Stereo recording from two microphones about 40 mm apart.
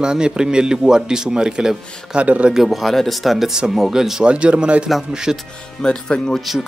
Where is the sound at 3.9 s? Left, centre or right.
Centre.